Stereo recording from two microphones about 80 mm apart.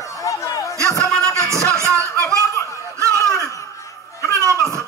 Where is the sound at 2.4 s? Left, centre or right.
Left.